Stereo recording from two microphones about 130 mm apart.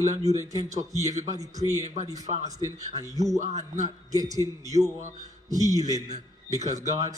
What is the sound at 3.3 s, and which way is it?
Speech, 60° right (ahead or behind).